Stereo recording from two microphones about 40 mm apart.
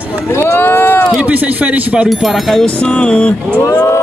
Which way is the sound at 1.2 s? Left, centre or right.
Right.